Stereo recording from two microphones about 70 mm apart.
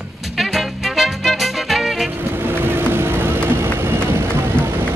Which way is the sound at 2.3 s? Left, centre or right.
Right.